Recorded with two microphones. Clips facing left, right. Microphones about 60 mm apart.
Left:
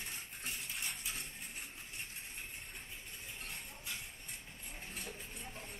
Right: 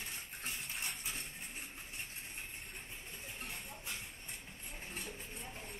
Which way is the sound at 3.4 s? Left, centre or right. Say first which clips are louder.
Right 2 dB; centre.